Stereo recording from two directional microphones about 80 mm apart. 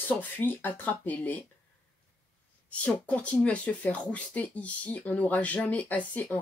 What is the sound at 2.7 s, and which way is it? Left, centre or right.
Speech, centre.